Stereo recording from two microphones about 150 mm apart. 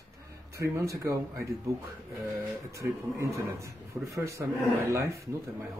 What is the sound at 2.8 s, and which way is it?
Speech, 20° right (ahead or behind).